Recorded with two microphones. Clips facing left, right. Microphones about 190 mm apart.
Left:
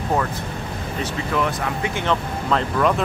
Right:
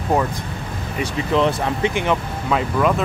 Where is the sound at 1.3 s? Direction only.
25° right (ahead or behind).